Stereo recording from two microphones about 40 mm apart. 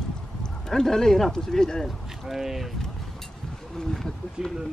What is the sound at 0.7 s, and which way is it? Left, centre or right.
Speech, centre.